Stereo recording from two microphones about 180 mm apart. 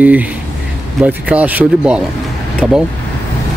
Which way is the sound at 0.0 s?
10° right (ahead or behind).